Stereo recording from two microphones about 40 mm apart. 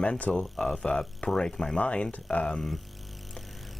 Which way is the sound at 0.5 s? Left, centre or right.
Centre.